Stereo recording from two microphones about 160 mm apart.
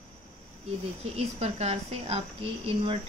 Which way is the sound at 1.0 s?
40° right (ahead or behind).